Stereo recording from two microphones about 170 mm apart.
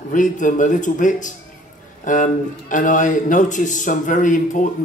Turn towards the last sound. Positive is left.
turn(degrees=50)  # may be behind; listen again after turning